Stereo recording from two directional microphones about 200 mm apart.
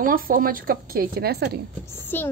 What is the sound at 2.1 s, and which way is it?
Speech, 10° left (ahead or behind).